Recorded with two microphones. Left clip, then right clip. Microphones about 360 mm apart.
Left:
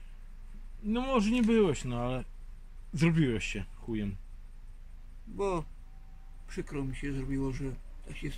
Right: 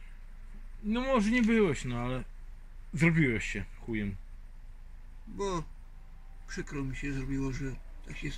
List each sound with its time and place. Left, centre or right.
0.8 s speech: centre
5.4 s speech: left